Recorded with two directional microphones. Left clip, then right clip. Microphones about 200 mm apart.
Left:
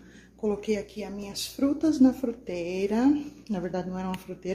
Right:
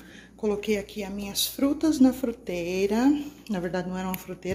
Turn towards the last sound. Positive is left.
turn(degrees=-5)  # may be behind; listen again after turning